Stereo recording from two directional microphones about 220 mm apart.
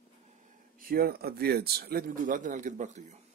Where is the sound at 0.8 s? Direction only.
45° right (ahead or behind).